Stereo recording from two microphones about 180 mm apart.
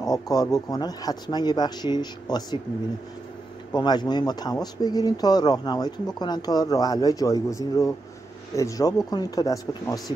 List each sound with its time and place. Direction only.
0.0 s speech: 20° left (ahead or behind)
3.7 s speech: 25° left (ahead or behind)